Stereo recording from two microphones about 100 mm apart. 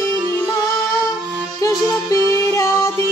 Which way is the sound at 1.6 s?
35° left (ahead or behind).